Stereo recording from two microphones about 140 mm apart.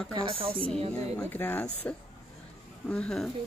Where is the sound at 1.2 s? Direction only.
15° left (ahead or behind).